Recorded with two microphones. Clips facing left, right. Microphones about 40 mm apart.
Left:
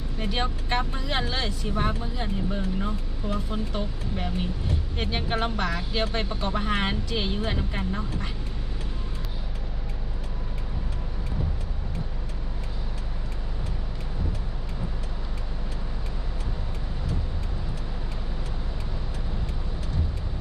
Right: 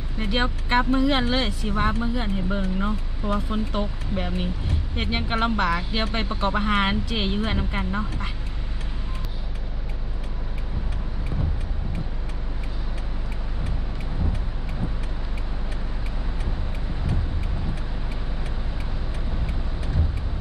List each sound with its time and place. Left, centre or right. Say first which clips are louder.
0.2 s speech: right 4 dB; centre
2.0 s speech: right 5 dB; right